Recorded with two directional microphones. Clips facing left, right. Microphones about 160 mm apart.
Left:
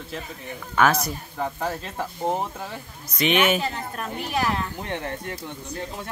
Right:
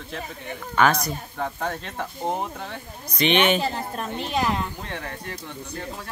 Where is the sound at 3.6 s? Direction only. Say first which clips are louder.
Right 2 dB; 35° right (ahead or behind).